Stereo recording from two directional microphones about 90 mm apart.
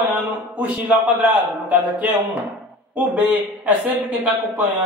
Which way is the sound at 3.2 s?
20° right (ahead or behind).